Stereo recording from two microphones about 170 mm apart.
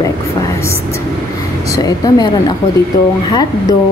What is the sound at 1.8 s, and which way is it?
A woman's voice, 25° left (ahead or behind).